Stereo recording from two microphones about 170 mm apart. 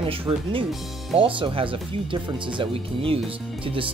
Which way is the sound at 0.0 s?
30° right (ahead or behind).